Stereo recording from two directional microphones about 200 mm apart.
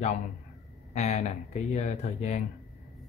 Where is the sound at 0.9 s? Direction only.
35° left (ahead or behind).